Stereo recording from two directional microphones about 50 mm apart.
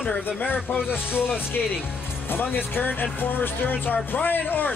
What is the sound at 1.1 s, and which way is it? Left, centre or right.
Speech, left.